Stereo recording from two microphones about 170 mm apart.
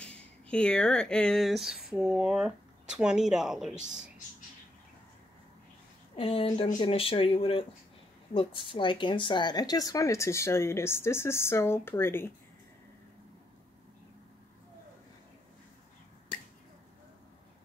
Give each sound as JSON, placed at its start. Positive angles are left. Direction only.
{"t": 0.5, "sound": "speech", "side_deg": 5}
{"t": 6.1, "sound": "speech", "side_deg": 35}